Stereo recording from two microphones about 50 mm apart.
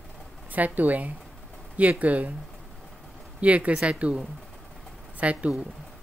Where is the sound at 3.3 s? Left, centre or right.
Right.